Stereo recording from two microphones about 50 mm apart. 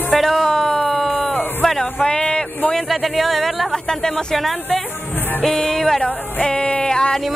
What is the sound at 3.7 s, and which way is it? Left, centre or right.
Music, centre.